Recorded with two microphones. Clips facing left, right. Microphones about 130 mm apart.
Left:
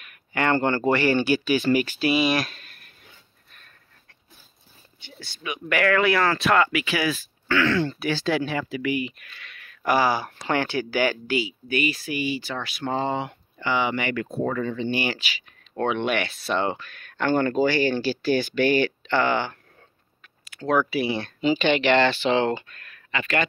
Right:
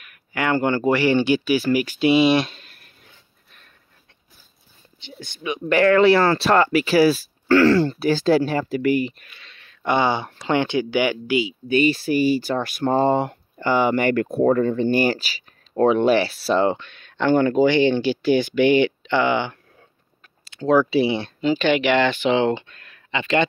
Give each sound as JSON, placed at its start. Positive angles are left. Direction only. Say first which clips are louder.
{"t": 0.3, "sound": "speech", "louder": "right 1 dB", "side_deg": -10}
{"t": 2.0, "sound": "speech", "louder": "right 6 dB", "side_deg": -25}
{"t": 5.2, "sound": "speech", "louder": "right 6 dB", "side_deg": -20}
{"t": 9.3, "sound": "speech", "louder": "left 2 dB", "side_deg": -25}
{"t": 20.4, "sound": "a sound", "louder": "right 5 dB", "side_deg": -25}
{"t": 20.9, "sound": "speech", "louder": "right 6 dB", "side_deg": -25}
{"t": 21.4, "sound": "speech", "louder": "even", "side_deg": 5}
{"t": 21.6, "sound": "speech", "louder": "right 1 dB", "side_deg": -10}